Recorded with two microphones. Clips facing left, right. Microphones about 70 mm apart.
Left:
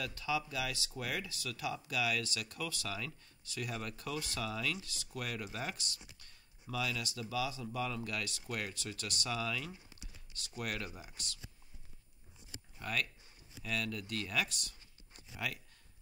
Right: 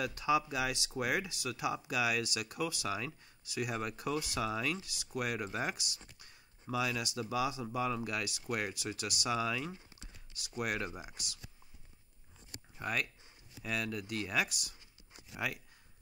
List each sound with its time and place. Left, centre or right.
0.0 s speech: centre
12.7 s speech: centre